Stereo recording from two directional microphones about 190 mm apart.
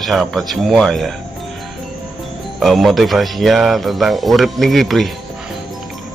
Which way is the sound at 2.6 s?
Centre (ahead or behind).